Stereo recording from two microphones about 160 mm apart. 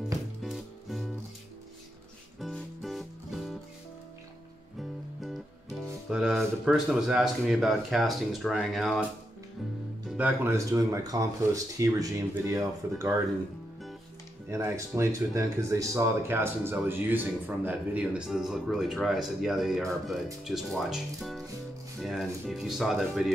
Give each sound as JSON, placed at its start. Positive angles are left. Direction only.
{"t": 0.4, "sound": "music", "side_deg": 0}
{"t": 2.4, "sound": "music", "side_deg": 0}
{"t": 6.0, "sound": "speech", "side_deg": 0}
{"t": 10.0, "sound": "speech", "side_deg": -10}
{"t": 14.5, "sound": "speech", "side_deg": -20}